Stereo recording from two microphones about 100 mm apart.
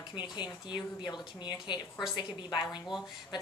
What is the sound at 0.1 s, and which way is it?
Speech, 45° left (ahead or behind).